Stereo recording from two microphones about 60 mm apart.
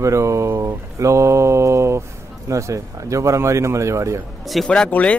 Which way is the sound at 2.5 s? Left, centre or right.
Right.